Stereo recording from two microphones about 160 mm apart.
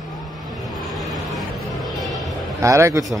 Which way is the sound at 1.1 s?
Centre (ahead or behind).